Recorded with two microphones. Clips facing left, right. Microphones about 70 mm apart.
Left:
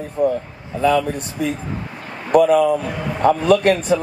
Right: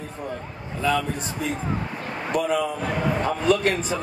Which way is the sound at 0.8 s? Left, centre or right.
Left.